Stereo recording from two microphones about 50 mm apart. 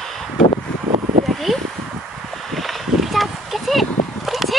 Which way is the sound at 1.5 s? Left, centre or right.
Centre.